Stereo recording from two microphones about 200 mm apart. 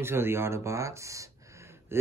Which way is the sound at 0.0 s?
10° right (ahead or behind).